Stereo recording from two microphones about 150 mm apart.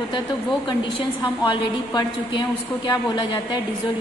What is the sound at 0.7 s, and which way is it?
A woman's voice, 30° left (ahead or behind).